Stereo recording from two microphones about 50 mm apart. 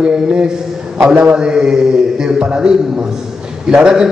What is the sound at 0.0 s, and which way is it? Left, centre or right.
A man's voice, centre.